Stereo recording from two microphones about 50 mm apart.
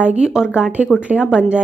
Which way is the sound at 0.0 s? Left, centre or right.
Centre.